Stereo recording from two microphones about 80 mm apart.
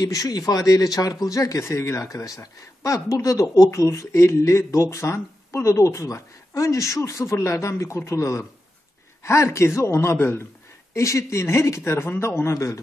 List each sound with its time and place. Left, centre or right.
0.0 s speech: left